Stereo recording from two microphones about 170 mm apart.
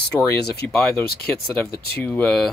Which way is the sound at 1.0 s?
65° left (ahead or behind).